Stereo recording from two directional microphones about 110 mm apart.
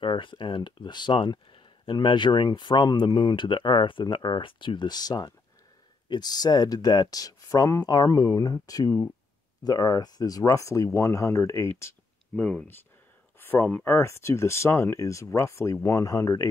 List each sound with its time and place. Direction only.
0.0 s speech: 50° left (ahead or behind); by 11.9 s 25° left (ahead or behind)
12.4 s speech: 10° left (ahead or behind); by 16.4 s 30° left (ahead or behind)